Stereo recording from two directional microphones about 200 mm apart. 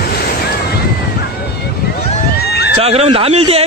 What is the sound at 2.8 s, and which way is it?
Speech, 30° right (ahead or behind).